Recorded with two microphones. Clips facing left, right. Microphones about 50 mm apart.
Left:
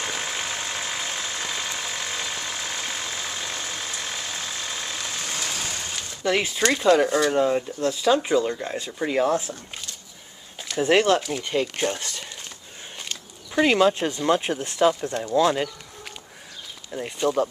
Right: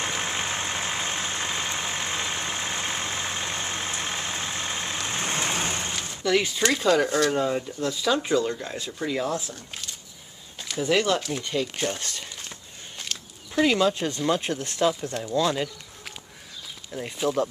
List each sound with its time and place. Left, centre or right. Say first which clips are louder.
0.2 s vehicle: right 1 dB; right
6.2 s speech: left 1 dB; centre
10.8 s speech: left 4 dB; left
11.8 s speech: left 3 dB; centre
17.2 s speech: left 2 dB; centre